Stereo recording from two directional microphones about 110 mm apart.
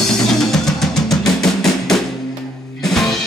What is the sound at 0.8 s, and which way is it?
Music, centre (ahead or behind).